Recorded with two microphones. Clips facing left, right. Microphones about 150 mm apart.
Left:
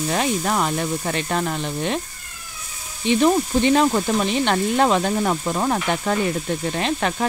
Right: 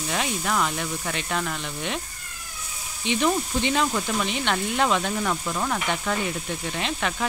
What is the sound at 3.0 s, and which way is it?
Speech, 40° left (ahead or behind).